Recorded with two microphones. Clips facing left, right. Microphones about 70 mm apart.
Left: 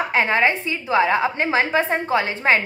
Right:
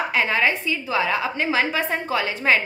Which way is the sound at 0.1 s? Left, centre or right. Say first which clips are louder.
Left 4 dB; left.